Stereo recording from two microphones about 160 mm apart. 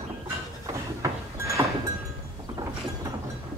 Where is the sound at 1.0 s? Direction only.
20° right (ahead or behind).